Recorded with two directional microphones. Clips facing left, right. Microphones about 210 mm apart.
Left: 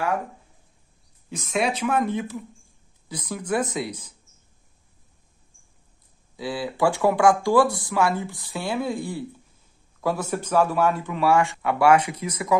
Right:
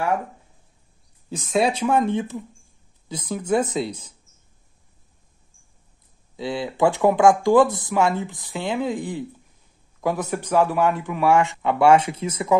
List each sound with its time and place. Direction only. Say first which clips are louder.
1.3 s speech: right 4 dB; 30° right (ahead or behind)
6.3 s a man's voice: right 2 dB; 25° right (ahead or behind)